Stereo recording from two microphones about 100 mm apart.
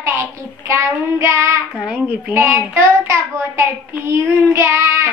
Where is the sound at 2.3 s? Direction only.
25° right (ahead or behind).